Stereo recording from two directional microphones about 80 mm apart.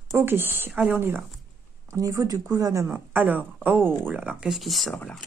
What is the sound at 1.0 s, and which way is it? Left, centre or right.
Speech, right.